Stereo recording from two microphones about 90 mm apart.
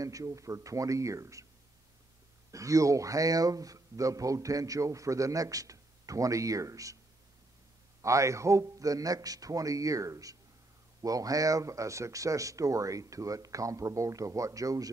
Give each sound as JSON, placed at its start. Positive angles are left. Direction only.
{"t": 0.0, "sound": "a man's voice", "side_deg": -40}
{"t": 2.5, "sound": "a man's voice", "side_deg": -35}
{"t": 8.0, "sound": "a man's voice", "side_deg": -35}